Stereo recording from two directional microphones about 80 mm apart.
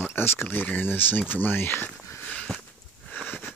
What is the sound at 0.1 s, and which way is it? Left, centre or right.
Speech, left.